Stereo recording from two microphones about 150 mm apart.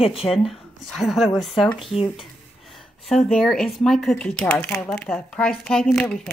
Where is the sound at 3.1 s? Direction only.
Centre (ahead or behind).